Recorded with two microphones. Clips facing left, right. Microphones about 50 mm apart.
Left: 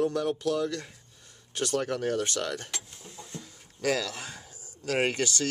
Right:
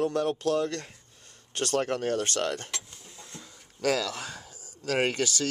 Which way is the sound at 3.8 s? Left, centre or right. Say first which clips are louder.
Right 1 dB; left.